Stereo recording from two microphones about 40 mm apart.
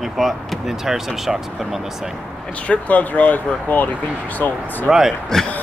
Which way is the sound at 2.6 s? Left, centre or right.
Left.